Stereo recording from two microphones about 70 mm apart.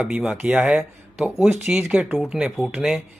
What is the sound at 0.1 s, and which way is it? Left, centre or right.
Speech, centre.